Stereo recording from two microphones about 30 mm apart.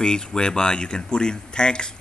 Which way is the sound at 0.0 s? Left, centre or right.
Left.